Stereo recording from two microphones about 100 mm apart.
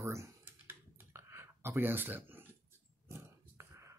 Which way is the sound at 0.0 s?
30° right (ahead or behind).